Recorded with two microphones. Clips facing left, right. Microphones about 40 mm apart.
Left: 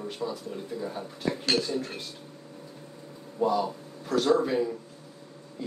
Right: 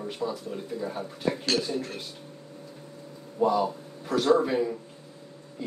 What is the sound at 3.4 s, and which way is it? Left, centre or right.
Speech, centre.